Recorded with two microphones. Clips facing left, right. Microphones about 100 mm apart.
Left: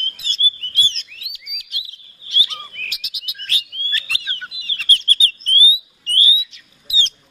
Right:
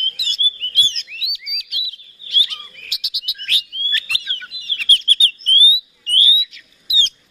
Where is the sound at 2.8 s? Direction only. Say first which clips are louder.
Left 1 dB; 35° left (ahead or behind).